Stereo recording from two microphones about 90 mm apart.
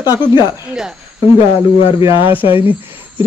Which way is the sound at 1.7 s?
90° left.